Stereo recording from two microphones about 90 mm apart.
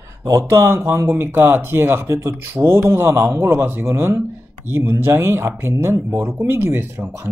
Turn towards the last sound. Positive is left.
turn(degrees=-25)  # may be behind; listen again after turning